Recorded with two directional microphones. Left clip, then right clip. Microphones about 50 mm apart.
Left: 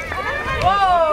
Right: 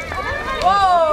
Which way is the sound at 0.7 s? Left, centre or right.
Centre.